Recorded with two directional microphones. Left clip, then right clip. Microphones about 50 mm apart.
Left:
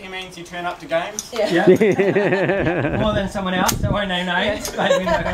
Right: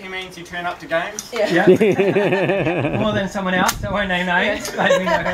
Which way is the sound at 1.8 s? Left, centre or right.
Right.